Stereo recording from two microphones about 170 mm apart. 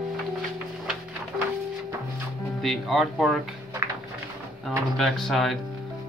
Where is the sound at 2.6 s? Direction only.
Centre (ahead or behind).